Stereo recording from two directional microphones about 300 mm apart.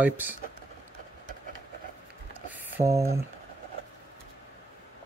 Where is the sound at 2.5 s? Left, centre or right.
Centre.